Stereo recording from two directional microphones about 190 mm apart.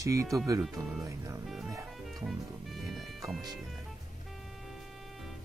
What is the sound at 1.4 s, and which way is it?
Music, centre (ahead or behind).